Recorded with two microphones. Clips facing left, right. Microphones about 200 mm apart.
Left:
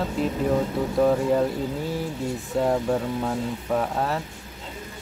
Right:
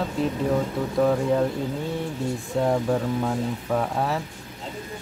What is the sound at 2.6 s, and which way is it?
Speech, centre (ahead or behind).